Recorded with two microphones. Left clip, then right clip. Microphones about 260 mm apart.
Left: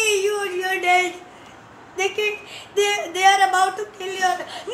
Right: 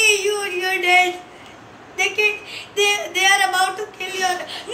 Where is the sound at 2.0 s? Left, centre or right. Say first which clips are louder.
Right 4 dB; left.